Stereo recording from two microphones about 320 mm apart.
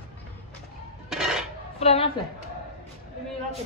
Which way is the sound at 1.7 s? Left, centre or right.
Centre.